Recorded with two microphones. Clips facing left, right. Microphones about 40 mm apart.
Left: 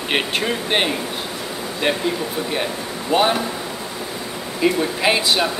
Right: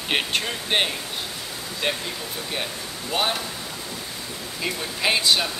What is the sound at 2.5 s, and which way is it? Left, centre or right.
Speech, centre.